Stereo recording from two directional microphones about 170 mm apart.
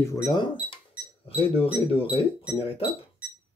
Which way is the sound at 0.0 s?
20° left (ahead or behind).